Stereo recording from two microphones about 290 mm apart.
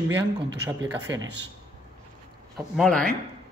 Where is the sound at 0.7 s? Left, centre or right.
Centre.